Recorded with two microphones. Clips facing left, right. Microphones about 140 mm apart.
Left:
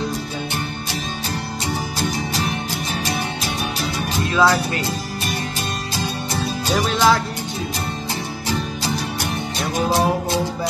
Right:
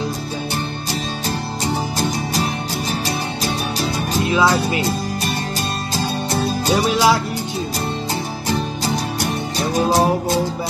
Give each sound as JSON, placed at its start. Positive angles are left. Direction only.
{"t": 3.4, "sound": "music", "side_deg": -35}
{"t": 4.3, "sound": "speech", "side_deg": -10}
{"t": 6.7, "sound": "speech", "side_deg": -10}
{"t": 9.8, "sound": "music", "side_deg": -40}